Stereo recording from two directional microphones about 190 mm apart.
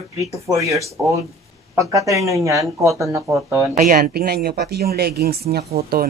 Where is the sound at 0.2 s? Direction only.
15° right (ahead or behind).